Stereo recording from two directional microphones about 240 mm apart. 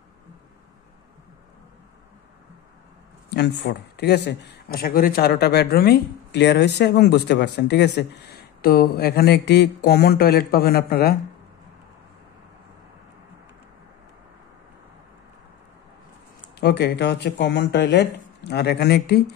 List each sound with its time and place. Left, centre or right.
3.3 s speech: left
16.5 s speech: left